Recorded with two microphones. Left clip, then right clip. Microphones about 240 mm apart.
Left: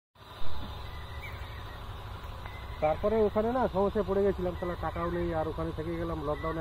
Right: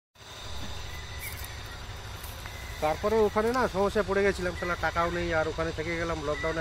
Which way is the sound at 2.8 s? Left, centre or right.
Centre.